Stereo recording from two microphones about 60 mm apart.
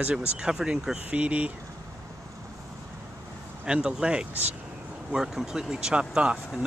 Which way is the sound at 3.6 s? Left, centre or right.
Centre.